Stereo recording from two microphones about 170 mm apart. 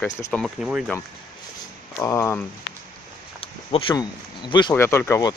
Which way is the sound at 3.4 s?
35° left (ahead or behind).